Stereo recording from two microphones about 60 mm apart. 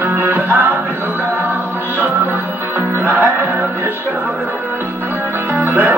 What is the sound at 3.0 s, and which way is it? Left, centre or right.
Music, right.